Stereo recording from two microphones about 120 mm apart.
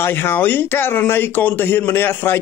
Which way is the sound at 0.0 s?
20° left (ahead or behind).